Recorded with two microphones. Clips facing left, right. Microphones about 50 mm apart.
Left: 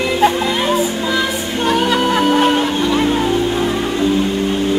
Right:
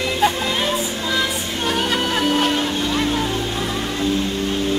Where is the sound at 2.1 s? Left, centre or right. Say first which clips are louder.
Left 6 dB; left.